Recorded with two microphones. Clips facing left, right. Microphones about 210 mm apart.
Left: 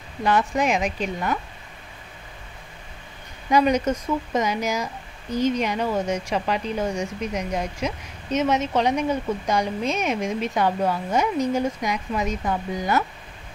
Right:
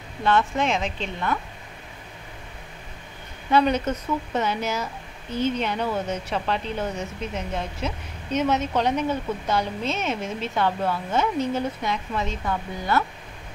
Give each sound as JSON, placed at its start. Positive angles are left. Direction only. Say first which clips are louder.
{"t": 0.2, "sound": "speech", "louder": "left 1 dB", "side_deg": 15}
{"t": 3.4, "sound": "speech", "louder": "left 1 dB", "side_deg": 15}